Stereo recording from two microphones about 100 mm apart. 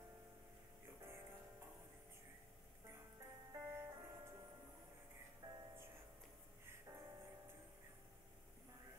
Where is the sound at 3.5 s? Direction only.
25° right (ahead or behind).